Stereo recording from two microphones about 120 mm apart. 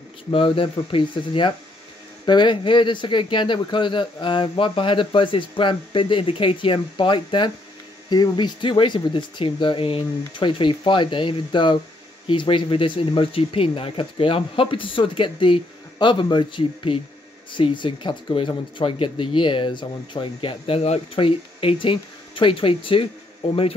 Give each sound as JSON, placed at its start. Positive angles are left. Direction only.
{"t": 0.3, "sound": "speech", "side_deg": 50}